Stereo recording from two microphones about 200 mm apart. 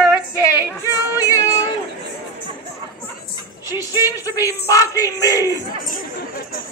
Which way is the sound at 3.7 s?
10° right (ahead or behind).